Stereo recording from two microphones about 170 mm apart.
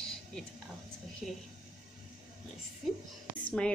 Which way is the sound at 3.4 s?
5° left (ahead or behind).